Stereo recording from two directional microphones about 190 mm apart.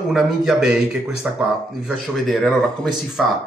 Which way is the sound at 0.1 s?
Centre (ahead or behind).